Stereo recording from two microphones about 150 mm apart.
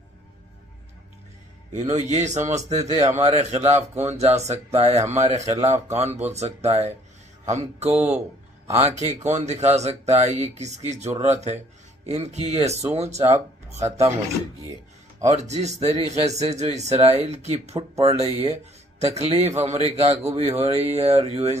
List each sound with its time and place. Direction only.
1.7 s speech: 50° right (ahead or behind)
7.9 s speech: 10° right (ahead or behind)
8.8 s speech: 50° right (ahead or behind)
15.2 s speech: 50° right (ahead or behind)